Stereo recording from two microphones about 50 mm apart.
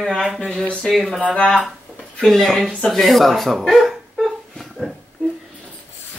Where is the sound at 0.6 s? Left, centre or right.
Left.